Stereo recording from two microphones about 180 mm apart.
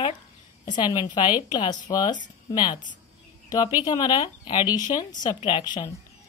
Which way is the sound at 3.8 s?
20° left (ahead or behind).